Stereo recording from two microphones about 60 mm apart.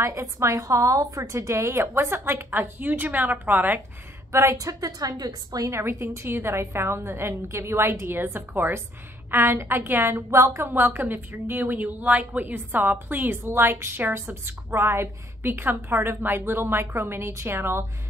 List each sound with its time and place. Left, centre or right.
0.0 s a woman's voice: right
4.3 s a woman's voice: right
4.6 s a woman's voice: right
5.8 s a woman's voice: right
10.6 s a woman's voice: right